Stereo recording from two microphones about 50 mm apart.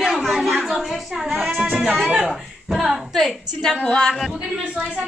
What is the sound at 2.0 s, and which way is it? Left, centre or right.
Speech, centre.